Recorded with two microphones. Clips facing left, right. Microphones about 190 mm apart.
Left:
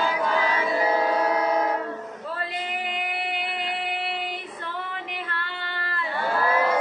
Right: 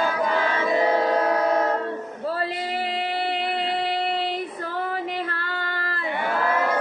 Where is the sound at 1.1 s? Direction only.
10° left (ahead or behind).